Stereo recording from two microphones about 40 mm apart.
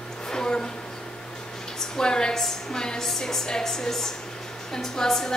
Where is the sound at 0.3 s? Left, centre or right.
Centre.